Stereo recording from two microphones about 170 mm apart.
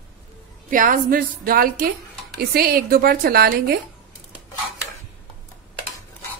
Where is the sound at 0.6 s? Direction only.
50° right (ahead or behind).